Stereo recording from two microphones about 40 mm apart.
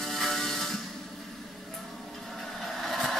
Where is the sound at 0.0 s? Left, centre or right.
Centre.